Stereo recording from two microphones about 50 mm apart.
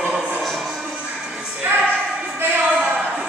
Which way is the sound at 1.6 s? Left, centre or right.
Right.